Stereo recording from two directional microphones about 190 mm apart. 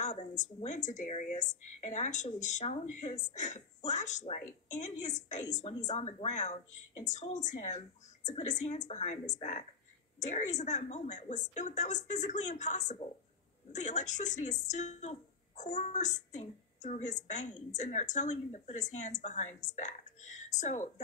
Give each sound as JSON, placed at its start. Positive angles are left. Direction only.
{"t": 0.0, "sound": "speech", "side_deg": 40}